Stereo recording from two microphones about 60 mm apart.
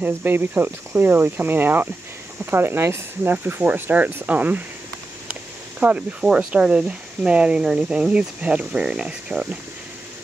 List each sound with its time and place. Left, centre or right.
0.0 s speech: right
5.3 s a sound: right
6.5 s speech: centre